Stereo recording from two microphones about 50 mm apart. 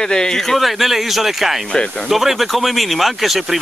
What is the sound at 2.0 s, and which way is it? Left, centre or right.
Speech, centre.